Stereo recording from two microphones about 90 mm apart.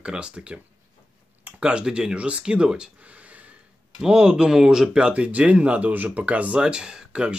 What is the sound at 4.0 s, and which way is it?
Speech, 10° right (ahead or behind).